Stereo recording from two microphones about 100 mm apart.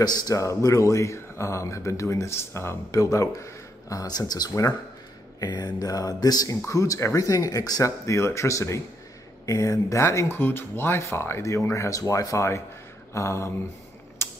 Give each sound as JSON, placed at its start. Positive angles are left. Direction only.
{"t": 0.0, "sound": "speech", "side_deg": 35}
{"t": 14.2, "sound": "typing", "side_deg": 25}